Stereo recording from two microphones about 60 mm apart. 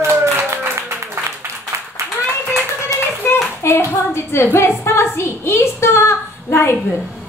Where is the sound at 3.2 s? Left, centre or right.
Left.